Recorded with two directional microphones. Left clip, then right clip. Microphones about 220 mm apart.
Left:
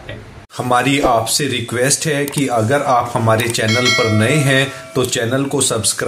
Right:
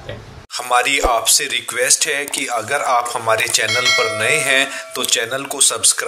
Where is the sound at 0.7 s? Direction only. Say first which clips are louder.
Left 1 dB; 30° right (ahead or behind).